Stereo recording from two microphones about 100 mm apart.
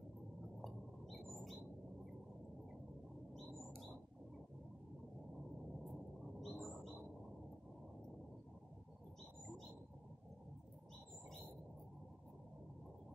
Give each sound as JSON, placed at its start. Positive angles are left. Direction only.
{"t": 0.6, "sound": "rodents", "side_deg": 0}
{"t": 6.4, "sound": "bird", "side_deg": 0}